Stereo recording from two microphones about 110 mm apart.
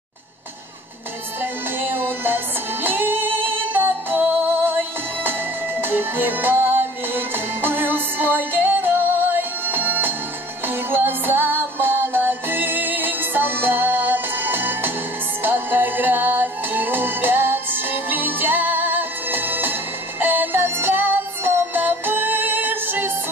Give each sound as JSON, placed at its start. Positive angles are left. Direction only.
{"t": 1.4, "sound": "music", "side_deg": -20}
{"t": 5.8, "sound": "music", "side_deg": -20}